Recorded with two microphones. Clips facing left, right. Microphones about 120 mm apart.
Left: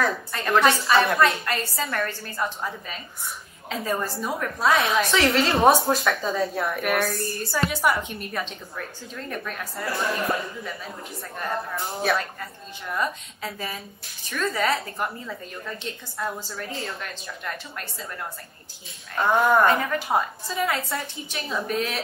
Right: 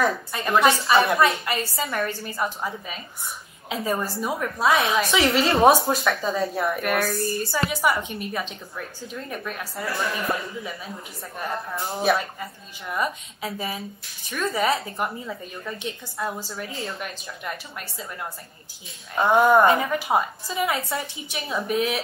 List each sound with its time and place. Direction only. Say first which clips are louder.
0.3 s a woman's voice: even; 10° right (ahead or behind)
12.0 s a woman's voice: right 3 dB; 10° right (ahead or behind)
14.6 s a woman's voice: right 2 dB; 25° right (ahead or behind)
19.1 s a woman's voice: right 3 dB; 20° right (ahead or behind)
20.6 s a woman's voice: right 1 dB; 10° right (ahead or behind)